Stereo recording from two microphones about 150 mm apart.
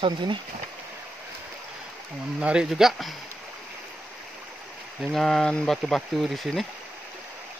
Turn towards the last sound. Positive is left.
turn(degrees=0)  # may be behind; listen again after turning